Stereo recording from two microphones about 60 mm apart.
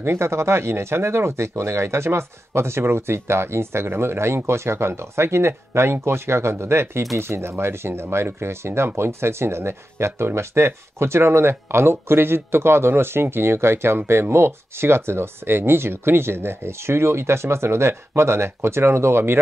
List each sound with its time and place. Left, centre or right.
0.0 s speech: right